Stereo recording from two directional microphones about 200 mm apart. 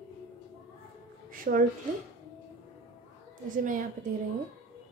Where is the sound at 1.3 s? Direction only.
45° right (ahead or behind).